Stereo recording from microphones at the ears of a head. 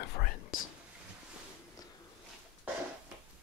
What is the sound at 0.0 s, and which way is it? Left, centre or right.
Whispering, left.